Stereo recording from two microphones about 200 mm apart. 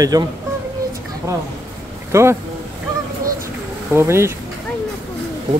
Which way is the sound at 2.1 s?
15° right (ahead or behind).